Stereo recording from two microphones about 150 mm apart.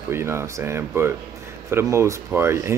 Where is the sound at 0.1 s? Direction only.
15° right (ahead or behind).